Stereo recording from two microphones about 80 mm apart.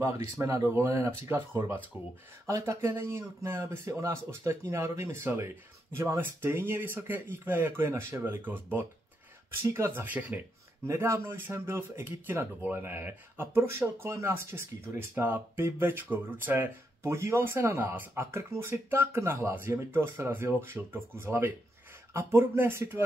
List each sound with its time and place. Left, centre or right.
0.0 s speech: right
10.0 s speech: right
10.9 s speech: right
17.0 s speech: right